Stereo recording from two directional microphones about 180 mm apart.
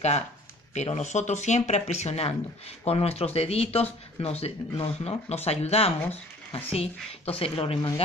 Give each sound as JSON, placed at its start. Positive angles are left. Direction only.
{"t": 0.7, "sound": "speech", "side_deg": 35}